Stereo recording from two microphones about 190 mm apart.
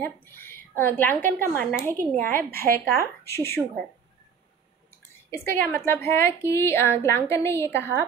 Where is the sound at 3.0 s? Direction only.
15° left (ahead or behind).